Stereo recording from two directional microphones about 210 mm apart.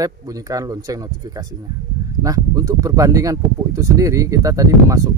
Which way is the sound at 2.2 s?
15° right (ahead or behind).